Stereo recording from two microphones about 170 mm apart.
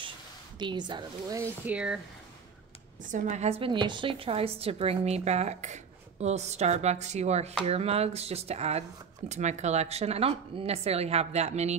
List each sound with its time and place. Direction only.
0.6 s a woman's voice: 25° right (ahead or behind)
1.4 s speech: 10° right (ahead or behind)
3.1 s a woman's voice: 45° right (ahead or behind)